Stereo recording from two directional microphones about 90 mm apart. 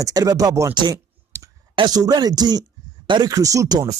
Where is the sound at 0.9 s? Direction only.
35° right (ahead or behind).